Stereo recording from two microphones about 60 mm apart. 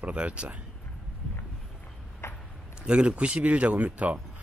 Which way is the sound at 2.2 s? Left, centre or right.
Left.